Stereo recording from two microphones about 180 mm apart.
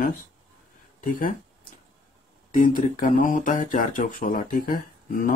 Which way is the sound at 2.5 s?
45° left (ahead or behind).